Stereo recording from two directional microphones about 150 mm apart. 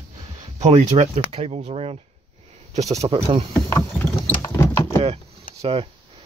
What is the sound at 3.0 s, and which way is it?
Speech, 40° right (ahead or behind).